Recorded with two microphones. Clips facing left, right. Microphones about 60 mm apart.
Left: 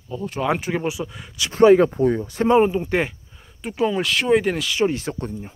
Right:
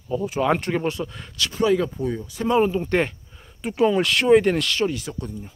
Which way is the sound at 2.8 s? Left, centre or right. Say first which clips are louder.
Even; centre.